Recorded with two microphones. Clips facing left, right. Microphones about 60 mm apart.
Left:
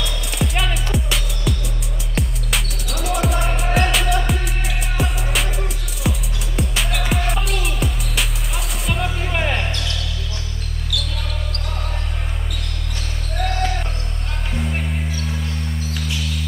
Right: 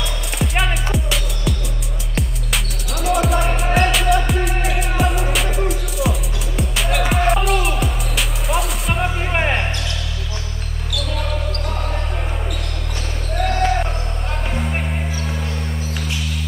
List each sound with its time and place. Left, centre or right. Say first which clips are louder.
0.0 s music: even; centre
9.0 s basketball bounce: right 3 dB; right
13.6 s basketball bounce: right 8 dB; right
14.5 s music: left 1 dB; centre